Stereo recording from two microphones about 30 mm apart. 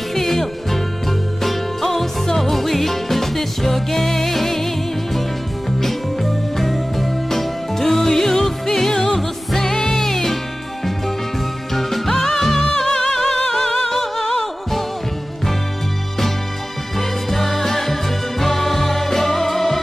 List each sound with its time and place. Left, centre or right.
0.1 s music: centre
6.5 s music: centre
11.7 s music: centre
17.0 s music: centre